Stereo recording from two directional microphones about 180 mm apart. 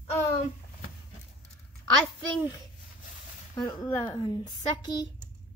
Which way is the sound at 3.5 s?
20° left (ahead or behind).